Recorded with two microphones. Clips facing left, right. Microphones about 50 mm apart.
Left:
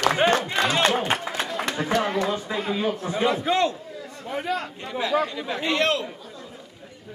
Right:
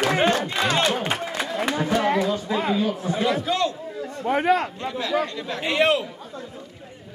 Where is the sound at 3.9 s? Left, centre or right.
Right.